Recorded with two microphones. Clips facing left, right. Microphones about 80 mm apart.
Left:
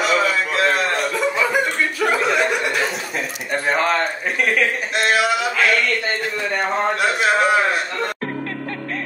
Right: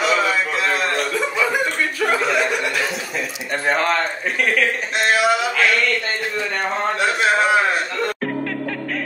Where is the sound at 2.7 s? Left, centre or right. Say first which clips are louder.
Left 1 dB; left.